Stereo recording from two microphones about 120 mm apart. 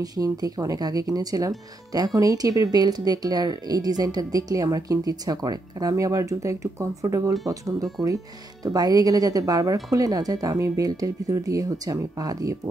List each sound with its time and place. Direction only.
0.0 s speech: 30° right (ahead or behind)